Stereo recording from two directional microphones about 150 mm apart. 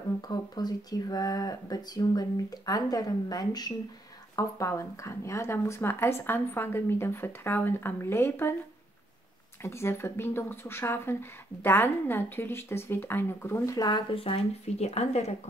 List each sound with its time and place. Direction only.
0.3 s speech: 25° left (ahead or behind)
9.6 s speech: 15° left (ahead or behind); by 15.3 s 45° left (ahead or behind)